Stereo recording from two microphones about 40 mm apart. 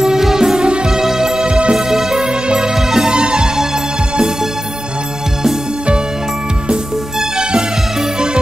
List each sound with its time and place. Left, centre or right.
0.0 s music: centre
1.9 s music: centre
3.2 s music: right
6.7 s music: centre